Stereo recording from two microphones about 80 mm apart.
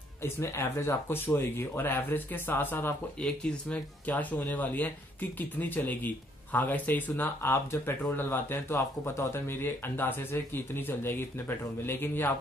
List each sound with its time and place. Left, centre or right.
0.2 s speech: left
3.2 s speech: centre; by 12.3 s left